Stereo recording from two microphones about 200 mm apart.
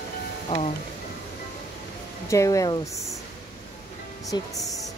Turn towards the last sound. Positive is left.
turn(degrees=20)  # may be behind; listen again after turning